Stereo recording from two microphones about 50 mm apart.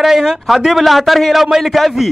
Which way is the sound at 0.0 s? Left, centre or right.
Centre.